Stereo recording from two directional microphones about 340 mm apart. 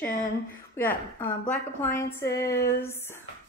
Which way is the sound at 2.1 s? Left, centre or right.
Centre.